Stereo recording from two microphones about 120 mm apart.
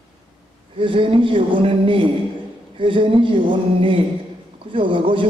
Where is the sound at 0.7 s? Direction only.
45° right (ahead or behind).